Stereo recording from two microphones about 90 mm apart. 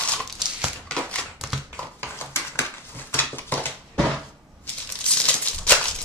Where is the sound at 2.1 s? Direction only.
25° left (ahead or behind).